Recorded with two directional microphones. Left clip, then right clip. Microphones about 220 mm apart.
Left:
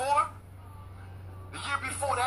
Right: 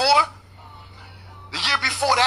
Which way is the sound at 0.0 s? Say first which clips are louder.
Right 10 dB; 40° right (ahead or behind).